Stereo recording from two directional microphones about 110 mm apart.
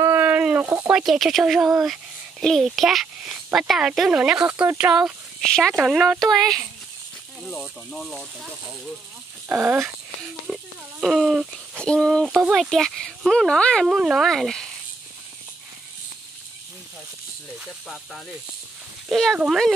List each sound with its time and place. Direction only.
0.0 s a sound: 15° right (ahead or behind)
1.0 s speech: centre (ahead or behind)
5.4 s speech: 5° left (ahead or behind)
9.6 s speech: 25° right (ahead or behind)
10.5 s speech: 5° right (ahead or behind)
13.8 s speech: 5° right (ahead or behind)
19.0 s speech: centre (ahead or behind)